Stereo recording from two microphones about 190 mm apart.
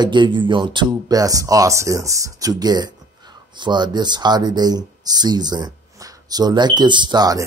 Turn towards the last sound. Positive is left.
turn(degrees=-20)  # may be behind; listen again after turning